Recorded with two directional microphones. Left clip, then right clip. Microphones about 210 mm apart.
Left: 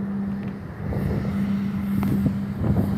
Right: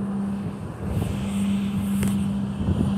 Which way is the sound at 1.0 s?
15° left (ahead or behind).